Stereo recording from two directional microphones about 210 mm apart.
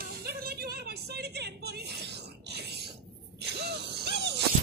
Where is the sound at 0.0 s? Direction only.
50° right (ahead or behind).